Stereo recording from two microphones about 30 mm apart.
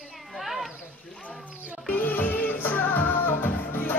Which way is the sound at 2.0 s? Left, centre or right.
Left.